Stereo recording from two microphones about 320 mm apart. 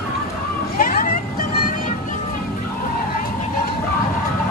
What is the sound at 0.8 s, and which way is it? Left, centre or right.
Vehicle, left.